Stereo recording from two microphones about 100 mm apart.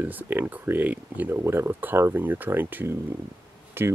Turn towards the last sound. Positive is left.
turn(degrees=-20)  # may be behind; listen again after turning